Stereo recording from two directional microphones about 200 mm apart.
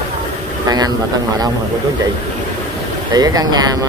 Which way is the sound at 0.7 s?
20° right (ahead or behind).